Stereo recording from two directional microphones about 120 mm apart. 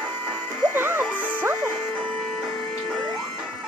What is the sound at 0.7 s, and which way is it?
Music, 15° right (ahead or behind).